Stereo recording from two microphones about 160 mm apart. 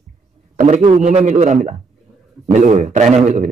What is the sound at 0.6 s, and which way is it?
A man's voice, 50° right (ahead or behind).